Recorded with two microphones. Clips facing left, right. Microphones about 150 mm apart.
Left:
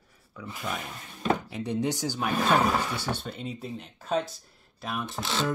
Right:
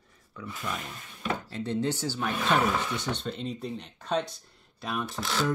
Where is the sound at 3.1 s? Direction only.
5° left (ahead or behind).